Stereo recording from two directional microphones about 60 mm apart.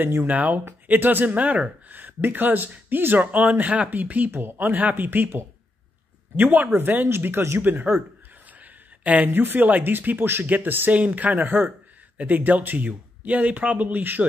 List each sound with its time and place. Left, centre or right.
0.0 s speech: right
8.5 s a sound: right
9.3 s speech: right